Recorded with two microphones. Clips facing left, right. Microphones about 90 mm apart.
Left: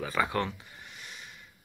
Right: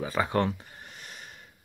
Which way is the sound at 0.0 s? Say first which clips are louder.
Right 3 dB; 25° right (ahead or behind).